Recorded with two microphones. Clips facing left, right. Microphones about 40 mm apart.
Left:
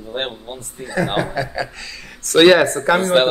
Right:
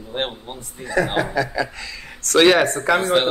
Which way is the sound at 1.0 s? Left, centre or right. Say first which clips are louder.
Left 1 dB; left.